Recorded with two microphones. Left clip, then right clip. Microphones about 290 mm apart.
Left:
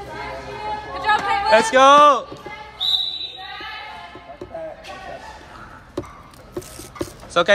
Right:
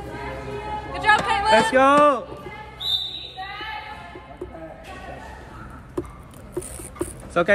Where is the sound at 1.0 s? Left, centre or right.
Right.